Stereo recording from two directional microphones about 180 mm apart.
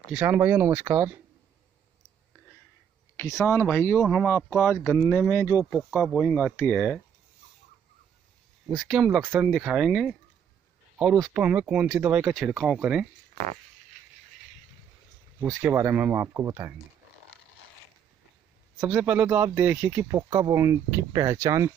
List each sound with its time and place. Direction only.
0.1 s speech: 10° right (ahead or behind)
3.4 s speech: 15° left (ahead or behind)
5.8 s speech: centre (ahead or behind)
8.7 s speech: centre (ahead or behind)
9.2 s speech: 10° right (ahead or behind)
9.5 s speech: centre (ahead or behind)
11.1 s speech: 20° right (ahead or behind)
11.4 s speech: 5° right (ahead or behind)
15.4 s speech: 10° right (ahead or behind)
18.9 s speech: 5° right (ahead or behind)